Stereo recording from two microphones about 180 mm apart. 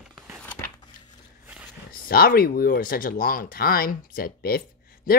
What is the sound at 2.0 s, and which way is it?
Speech, 55° left (ahead or behind).